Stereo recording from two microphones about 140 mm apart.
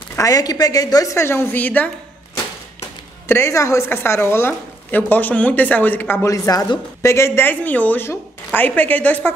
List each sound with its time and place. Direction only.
0.1 s a woman's voice: 25° left (ahead or behind)
3.3 s a woman's voice: 20° left (ahead or behind)